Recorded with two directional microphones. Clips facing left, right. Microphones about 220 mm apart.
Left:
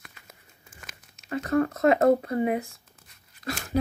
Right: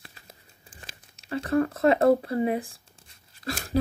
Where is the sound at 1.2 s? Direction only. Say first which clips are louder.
Even; 30° right (ahead or behind).